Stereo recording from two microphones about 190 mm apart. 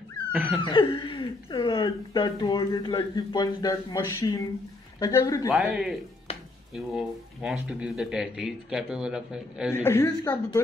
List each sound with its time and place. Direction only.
0.3 s laughter: 5° right (ahead or behind)
0.6 s speech: 25° left (ahead or behind)
5.5 s speech: 5° right (ahead or behind)
6.3 s a sound: 30° left (ahead or behind)
6.7 s speech: centre (ahead or behind)
9.8 s speech: 15° left (ahead or behind)